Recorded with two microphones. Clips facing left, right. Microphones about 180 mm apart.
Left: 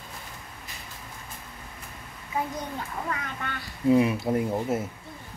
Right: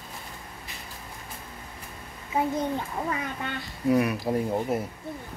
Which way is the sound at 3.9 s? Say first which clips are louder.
Left 2 dB; 25° left (ahead or behind).